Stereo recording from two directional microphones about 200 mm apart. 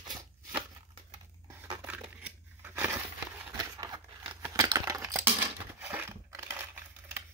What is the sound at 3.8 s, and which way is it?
Scissors, 20° right (ahead or behind).